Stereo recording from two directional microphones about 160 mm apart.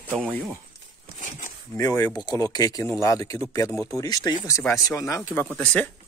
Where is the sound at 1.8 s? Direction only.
25° left (ahead or behind); by 5.9 s 10° left (ahead or behind).